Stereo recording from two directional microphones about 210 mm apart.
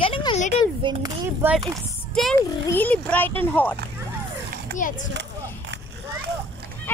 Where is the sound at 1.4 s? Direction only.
5° right (ahead or behind).